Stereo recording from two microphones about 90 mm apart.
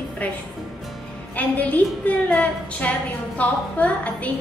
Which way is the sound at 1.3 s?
15° left (ahead or behind).